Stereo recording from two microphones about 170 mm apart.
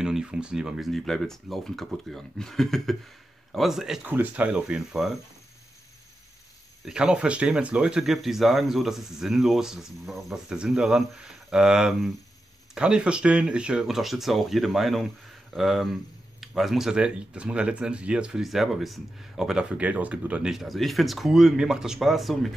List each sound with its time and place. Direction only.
0.0 s speech: 5° right (ahead or behind)
6.8 s speech: 5° right (ahead or behind)